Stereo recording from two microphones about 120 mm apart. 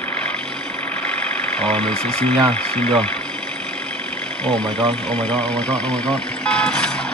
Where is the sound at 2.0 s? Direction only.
60° right (ahead or behind).